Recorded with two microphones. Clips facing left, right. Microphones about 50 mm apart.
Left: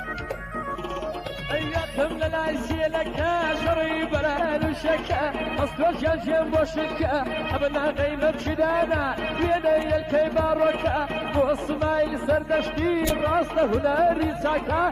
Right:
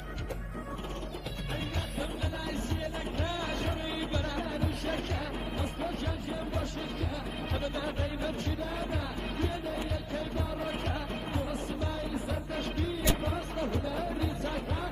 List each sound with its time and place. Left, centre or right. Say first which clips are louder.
1.5 s music: left 11 dB; left
2.4 s music: left 10 dB; left
4.1 s music: left 11 dB; left
7.5 s speech: left 11 dB; left
8.5 s music: left 13 dB; left
10.8 s music: left 11 dB; left